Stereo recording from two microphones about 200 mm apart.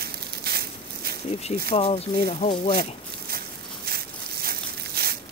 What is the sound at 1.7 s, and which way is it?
Speech, 30° left (ahead or behind).